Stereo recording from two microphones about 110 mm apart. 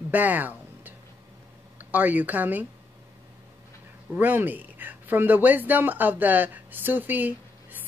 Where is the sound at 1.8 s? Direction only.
15° right (ahead or behind).